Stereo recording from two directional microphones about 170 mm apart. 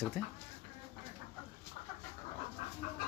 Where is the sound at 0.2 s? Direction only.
Centre (ahead or behind).